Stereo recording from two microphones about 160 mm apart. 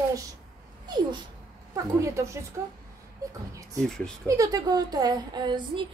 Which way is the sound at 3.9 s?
5° left (ahead or behind).